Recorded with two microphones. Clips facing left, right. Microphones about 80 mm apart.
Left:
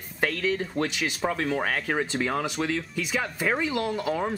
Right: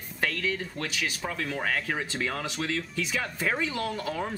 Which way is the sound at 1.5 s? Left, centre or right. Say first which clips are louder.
Left 3 dB; centre.